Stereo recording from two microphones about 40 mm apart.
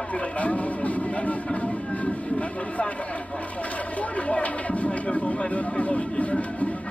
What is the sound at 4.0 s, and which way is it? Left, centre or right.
Speech, left.